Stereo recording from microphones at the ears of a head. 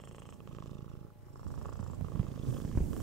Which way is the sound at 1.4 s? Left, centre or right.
Right.